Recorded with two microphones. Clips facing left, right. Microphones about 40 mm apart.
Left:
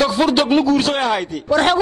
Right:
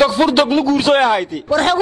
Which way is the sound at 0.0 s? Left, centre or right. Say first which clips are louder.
Right 3 dB; centre.